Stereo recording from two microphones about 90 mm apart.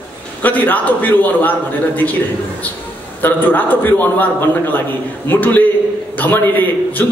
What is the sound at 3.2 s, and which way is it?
A man's voice, 20° left (ahead or behind).